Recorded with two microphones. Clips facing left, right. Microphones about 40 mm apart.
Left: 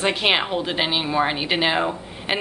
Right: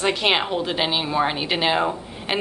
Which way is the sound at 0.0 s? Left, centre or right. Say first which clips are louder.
Even; centre.